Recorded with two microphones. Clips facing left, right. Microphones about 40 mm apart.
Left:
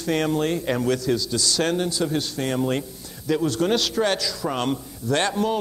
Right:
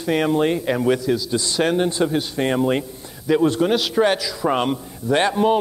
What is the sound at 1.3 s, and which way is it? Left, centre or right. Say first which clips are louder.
A man's voice: right 3 dB; right.